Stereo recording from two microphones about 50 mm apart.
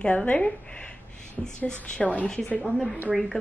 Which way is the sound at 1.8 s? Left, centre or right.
Left.